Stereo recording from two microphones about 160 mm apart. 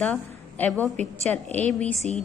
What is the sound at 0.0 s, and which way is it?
A woman's voice, 10° left (ahead or behind).